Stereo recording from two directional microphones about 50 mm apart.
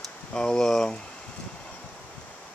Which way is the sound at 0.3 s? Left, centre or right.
Centre.